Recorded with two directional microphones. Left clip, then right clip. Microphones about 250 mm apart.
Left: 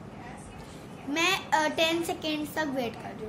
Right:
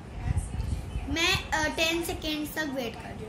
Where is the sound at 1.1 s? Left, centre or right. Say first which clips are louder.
Left 1 dB; centre.